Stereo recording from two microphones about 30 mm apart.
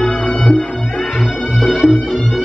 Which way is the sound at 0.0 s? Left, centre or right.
Left.